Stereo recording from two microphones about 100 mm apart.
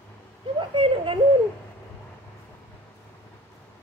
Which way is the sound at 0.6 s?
60° right (ahead or behind).